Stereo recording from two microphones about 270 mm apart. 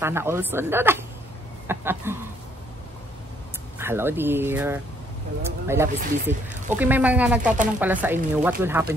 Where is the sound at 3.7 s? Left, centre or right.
Centre.